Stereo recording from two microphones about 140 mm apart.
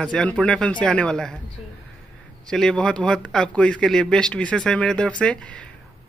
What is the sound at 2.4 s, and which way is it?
Speech, 5° left (ahead or behind).